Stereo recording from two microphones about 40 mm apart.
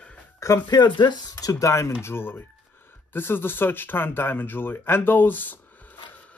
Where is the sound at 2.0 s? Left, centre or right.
Left.